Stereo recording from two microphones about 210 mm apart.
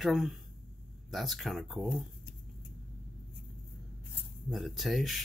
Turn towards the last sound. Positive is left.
turn(degrees=0)  # may be behind; listen again after turning